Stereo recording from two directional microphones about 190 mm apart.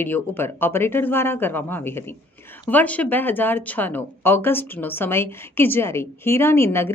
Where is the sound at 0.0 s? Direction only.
10° left (ahead or behind).